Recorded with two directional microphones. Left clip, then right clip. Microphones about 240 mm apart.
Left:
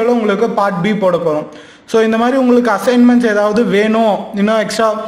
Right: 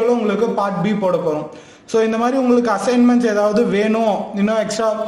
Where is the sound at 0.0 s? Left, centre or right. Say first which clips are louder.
Left 4 dB; centre.